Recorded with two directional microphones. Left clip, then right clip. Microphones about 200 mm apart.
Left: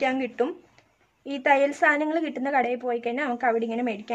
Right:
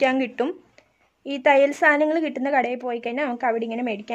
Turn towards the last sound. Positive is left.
turn(degrees=-35)  # may be behind; listen again after turning